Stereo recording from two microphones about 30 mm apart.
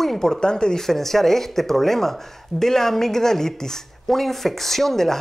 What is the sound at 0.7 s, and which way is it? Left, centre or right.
Speech, centre.